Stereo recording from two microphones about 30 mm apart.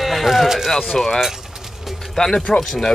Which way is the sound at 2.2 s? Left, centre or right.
Left.